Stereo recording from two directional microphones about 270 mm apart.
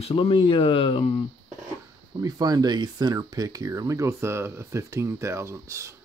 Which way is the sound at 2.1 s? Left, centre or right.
Centre.